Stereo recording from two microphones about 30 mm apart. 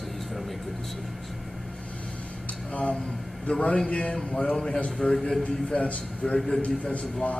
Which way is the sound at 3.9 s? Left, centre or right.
Left.